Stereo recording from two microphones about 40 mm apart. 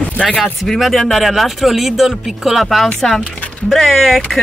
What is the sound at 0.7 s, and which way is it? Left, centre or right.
Speech, centre.